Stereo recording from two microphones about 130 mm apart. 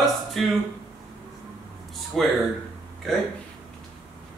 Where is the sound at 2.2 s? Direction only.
Centre (ahead or behind).